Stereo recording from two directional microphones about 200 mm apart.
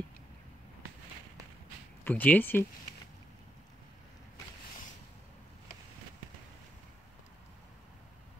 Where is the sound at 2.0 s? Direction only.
10° left (ahead or behind).